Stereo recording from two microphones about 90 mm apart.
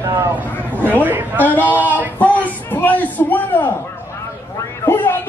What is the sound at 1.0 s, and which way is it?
Speech, 20° right (ahead or behind).